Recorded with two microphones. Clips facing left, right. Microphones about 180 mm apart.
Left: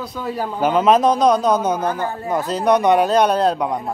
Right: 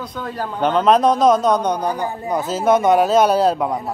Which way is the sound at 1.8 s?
15° right (ahead or behind).